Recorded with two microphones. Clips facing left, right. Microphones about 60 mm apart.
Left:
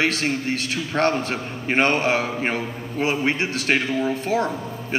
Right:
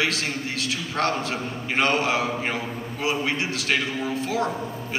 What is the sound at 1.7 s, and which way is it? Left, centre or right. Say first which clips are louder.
A man's voice: left 3 dB; left.